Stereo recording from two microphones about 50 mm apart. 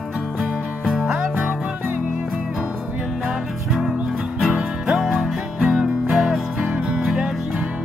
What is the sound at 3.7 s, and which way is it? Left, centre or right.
Music, centre.